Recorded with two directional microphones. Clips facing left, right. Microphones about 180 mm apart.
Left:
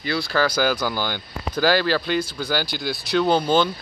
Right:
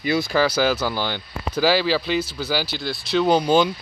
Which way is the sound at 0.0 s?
15° right (ahead or behind).